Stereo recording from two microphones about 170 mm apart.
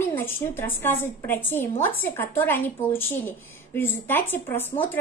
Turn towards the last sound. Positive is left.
turn(degrees=10)  # may be behind; listen again after turning